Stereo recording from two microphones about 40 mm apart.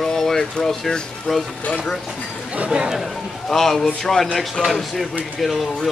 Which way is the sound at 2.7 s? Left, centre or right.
Centre.